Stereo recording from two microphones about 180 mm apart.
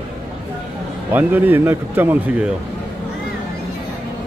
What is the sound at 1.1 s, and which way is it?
Speech, 10° right (ahead or behind).